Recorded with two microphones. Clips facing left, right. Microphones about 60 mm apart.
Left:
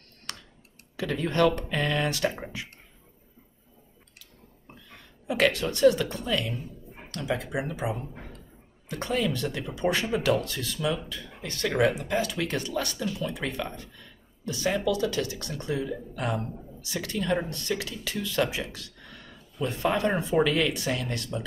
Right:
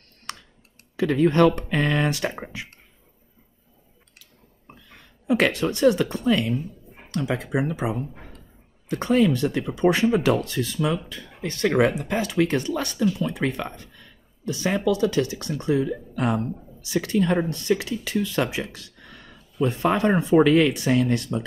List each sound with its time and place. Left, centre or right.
0.3 s clicking: right
0.9 s speech: right
5.3 s speech: right
9.0 s speech: right